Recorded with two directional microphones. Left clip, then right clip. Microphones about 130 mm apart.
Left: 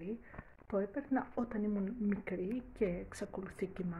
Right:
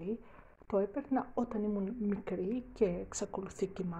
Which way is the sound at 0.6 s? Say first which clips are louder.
Right 4 dB; 10° right (ahead or behind).